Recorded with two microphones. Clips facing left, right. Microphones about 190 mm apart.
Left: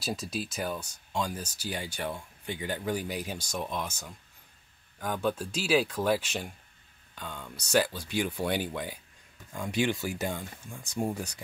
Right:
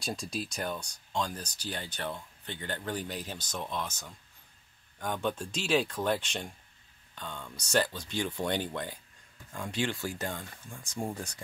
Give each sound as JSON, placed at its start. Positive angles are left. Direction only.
{"t": 0.0, "sound": "speech", "side_deg": 5}
{"t": 4.9, "sound": "speech", "side_deg": 5}